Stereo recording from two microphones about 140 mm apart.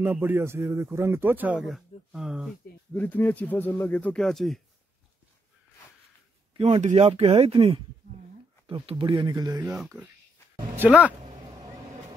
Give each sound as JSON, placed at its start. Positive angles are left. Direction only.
{"t": 0.0, "sound": "a man's voice", "side_deg": -15}
{"t": 2.9, "sound": "speech", "side_deg": 10}
{"t": 6.8, "sound": "speech", "side_deg": -55}
{"t": 7.1, "sound": "speech", "side_deg": -45}
{"t": 10.8, "sound": "a man's voice", "side_deg": -10}